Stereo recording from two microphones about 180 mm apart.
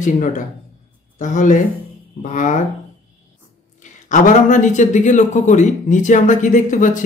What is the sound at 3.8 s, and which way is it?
Speech, 45° left (ahead or behind).